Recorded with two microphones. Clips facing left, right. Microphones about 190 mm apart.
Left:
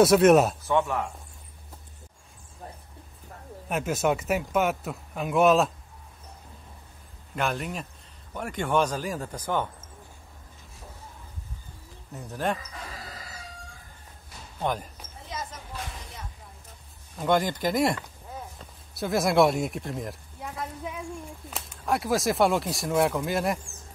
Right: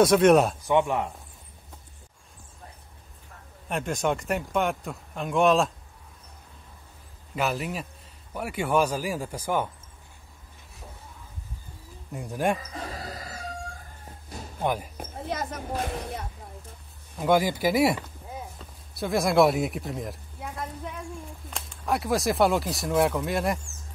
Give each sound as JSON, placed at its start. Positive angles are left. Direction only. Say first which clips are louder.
{"t": 0.0, "sound": "speech", "louder": "left 1 dB", "side_deg": 5}
{"t": 0.7, "sound": "speech", "louder": "right 2 dB", "side_deg": -15}
{"t": 3.6, "sound": "speech", "louder": "left 1 dB", "side_deg": 5}
{"t": 7.3, "sound": "speech", "louder": "right 1 dB", "side_deg": -5}
{"t": 12.1, "sound": "speech", "louder": "right 3 dB", "side_deg": -10}
{"t": 14.6, "sound": "speech", "louder": "right 2 dB", "side_deg": -10}
{"t": 15.0, "sound": "a sound", "louder": "right 6 dB", "side_deg": -60}
{"t": 17.2, "sound": "speech", "louder": "right 2 dB", "side_deg": -5}